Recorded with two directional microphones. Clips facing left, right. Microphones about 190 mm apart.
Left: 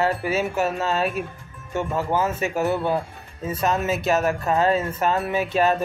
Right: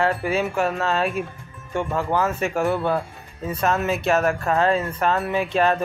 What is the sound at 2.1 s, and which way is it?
Speech, 20° left (ahead or behind).